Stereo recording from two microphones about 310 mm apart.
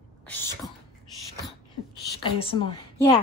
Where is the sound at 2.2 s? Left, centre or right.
Centre.